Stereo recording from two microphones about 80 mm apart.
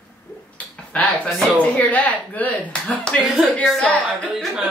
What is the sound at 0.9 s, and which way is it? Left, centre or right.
Speech, centre.